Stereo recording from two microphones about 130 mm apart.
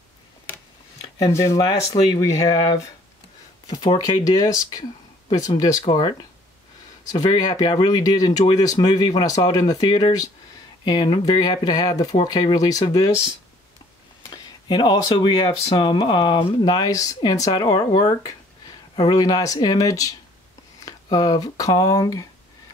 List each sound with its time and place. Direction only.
1.1 s speech: 25° left (ahead or behind)
7.2 s speech: 35° left (ahead or behind)
14.3 s speech: 35° left (ahead or behind)